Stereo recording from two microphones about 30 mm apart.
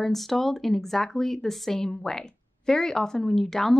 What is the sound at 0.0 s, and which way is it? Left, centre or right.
A woman's voice, centre.